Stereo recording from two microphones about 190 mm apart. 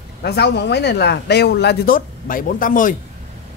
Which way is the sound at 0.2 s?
60° left (ahead or behind).